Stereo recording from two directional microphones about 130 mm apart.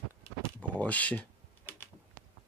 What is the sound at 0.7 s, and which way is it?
Computer keyboard, 10° left (ahead or behind).